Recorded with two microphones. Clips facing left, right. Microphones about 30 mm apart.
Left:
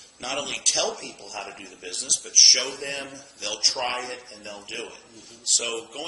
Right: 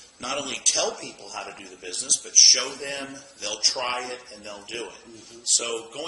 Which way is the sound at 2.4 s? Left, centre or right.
Left.